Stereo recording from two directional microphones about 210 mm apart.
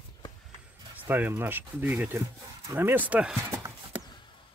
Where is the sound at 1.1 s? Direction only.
10° right (ahead or behind).